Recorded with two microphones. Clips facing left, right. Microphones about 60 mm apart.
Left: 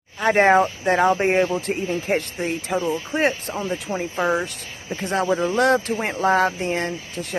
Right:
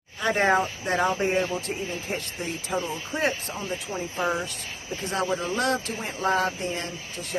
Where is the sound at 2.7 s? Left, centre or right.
Left.